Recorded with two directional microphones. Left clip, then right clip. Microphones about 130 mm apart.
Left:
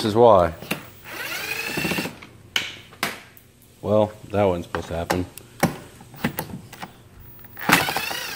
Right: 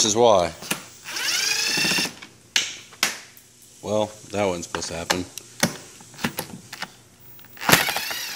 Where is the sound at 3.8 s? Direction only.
5° right (ahead or behind).